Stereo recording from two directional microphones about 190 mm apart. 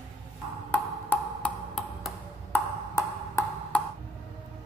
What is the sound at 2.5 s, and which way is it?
Ping, 10° left (ahead or behind).